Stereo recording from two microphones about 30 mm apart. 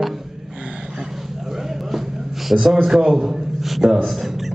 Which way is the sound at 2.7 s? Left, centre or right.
Centre.